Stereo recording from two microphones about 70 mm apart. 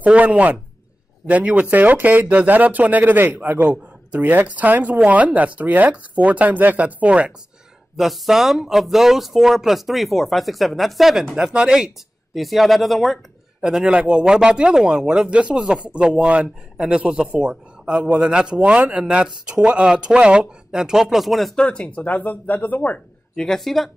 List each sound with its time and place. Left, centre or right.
0.0 s speech: centre
8.0 s speech: centre
12.4 s speech: centre
13.6 s speech: centre
21.5 s speech: centre
23.3 s speech: centre